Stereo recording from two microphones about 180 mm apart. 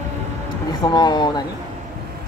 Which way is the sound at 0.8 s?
25° left (ahead or behind).